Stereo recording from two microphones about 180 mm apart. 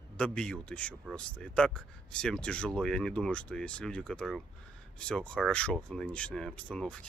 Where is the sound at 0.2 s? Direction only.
5° left (ahead or behind).